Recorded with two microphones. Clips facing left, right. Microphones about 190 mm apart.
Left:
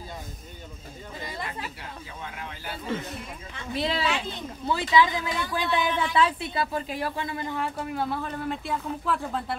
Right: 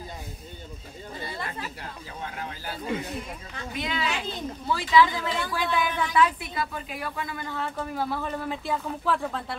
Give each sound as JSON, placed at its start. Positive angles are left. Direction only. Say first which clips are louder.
{"t": 3.7, "sound": "a woman's voice", "louder": "left 3 dB", "side_deg": 35}
{"t": 4.6, "sound": "a man's voice", "louder": "right 1 dB", "side_deg": 20}
{"t": 7.9, "sound": "speech", "louder": "even", "side_deg": 0}